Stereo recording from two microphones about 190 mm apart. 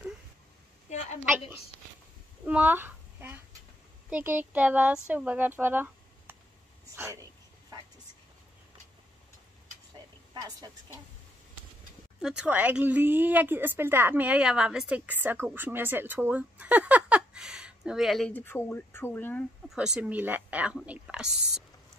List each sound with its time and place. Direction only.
0.9 s a sound: 35° left (ahead or behind)
2.4 s a woman's voice: 10° right (ahead or behind)
10.3 s a woman's voice: 20° right (ahead or behind)
12.2 s a woman's voice: 5° right (ahead or behind)
19.7 s a woman's voice: 5° right (ahead or behind)